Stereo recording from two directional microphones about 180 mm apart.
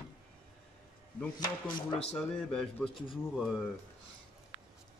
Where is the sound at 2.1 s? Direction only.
5° left (ahead or behind).